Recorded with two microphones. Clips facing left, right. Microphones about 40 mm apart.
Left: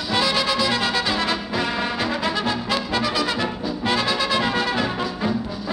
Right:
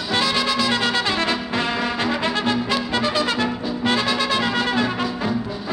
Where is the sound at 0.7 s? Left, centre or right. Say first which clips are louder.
Right 1 dB; right.